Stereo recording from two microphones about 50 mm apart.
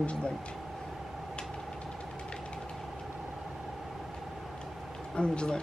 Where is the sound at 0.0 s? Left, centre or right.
Left.